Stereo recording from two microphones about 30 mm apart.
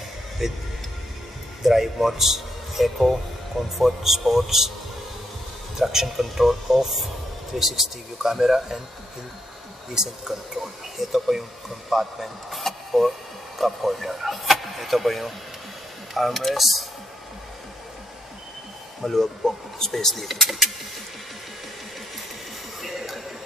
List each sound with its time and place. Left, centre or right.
0.4 s speech: centre
1.6 s speech: centre
5.8 s speech: centre
9.9 s speech: right
10.6 s speech: centre
19.0 s speech: centre
20.4 s speech: centre
22.9 s a sound: centre